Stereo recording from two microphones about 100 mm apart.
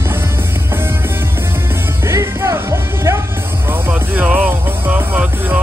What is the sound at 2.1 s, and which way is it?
Music, 30° right (ahead or behind).